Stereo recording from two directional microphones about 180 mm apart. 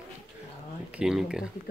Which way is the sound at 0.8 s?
5° right (ahead or behind).